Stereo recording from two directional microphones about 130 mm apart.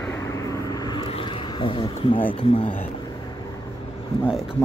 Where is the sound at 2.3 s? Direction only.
45° left (ahead or behind).